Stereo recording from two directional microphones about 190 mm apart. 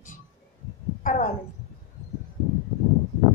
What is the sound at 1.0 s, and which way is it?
Speech, 45° left (ahead or behind).